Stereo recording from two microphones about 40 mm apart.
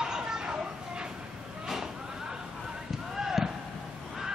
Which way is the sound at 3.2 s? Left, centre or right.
Centre.